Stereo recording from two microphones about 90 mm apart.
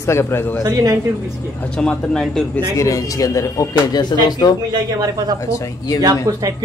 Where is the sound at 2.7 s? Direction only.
35° left (ahead or behind).